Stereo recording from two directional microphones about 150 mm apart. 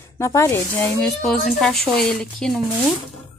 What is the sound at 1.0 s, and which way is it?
Speech, 5° left (ahead or behind).